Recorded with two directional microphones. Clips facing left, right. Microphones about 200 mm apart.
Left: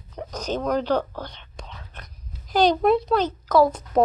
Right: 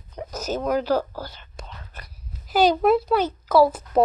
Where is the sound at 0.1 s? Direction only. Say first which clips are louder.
Even; 5° right (ahead or behind).